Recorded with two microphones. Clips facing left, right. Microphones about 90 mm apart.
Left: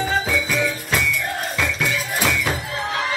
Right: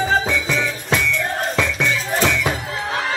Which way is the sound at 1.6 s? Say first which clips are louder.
Right 1 dB; 5° left (ahead or behind).